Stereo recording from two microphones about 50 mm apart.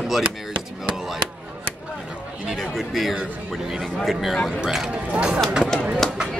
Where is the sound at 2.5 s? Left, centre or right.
Centre.